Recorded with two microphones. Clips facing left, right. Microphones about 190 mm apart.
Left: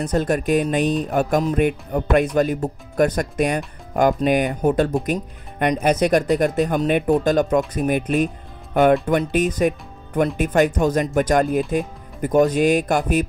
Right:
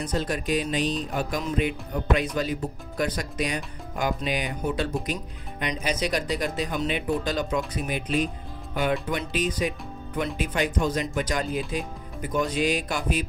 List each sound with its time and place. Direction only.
0.0 s speech: 50° left (ahead or behind)